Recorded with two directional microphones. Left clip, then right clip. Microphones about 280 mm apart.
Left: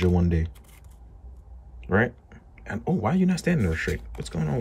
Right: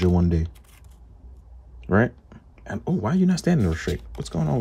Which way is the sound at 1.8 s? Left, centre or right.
Centre.